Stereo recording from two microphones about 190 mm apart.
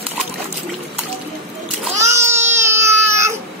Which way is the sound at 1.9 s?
15° right (ahead or behind).